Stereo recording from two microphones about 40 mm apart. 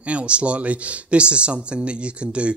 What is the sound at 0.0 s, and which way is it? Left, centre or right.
Speech, right.